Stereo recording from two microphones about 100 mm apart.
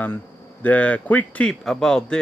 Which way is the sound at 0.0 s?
20° left (ahead or behind).